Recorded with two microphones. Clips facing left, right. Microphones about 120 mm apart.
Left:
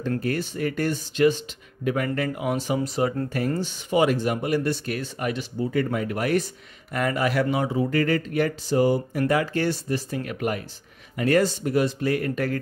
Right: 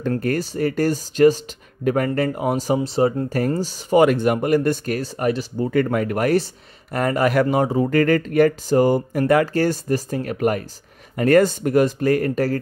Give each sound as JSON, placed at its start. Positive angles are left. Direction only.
{"t": 0.2, "sound": "speech", "side_deg": -45}
{"t": 4.0, "sound": "speech", "side_deg": -55}
{"t": 5.7, "sound": "speech", "side_deg": -60}
{"t": 6.3, "sound": "speech", "side_deg": -35}